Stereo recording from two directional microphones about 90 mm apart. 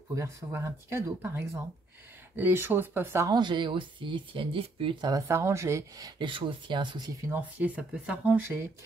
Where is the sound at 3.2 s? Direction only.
55° right (ahead or behind); by 5.1 s 70° right (ahead or behind).